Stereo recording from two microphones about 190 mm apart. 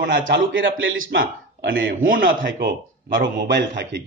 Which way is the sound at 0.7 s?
85° right.